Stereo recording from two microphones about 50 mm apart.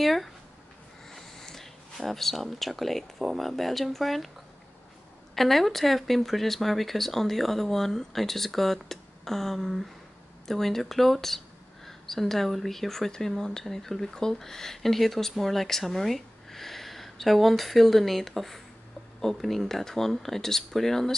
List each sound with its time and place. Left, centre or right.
0.0 s speech: centre
1.1 s a sound: centre
3.3 s speech: centre
5.3 s speech: centre